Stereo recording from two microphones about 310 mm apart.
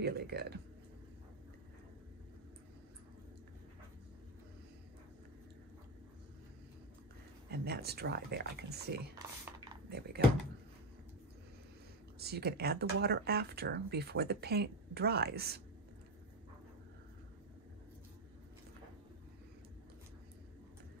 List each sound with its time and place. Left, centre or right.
0.0 s speech: right
7.5 s speech: right
12.2 s speech: right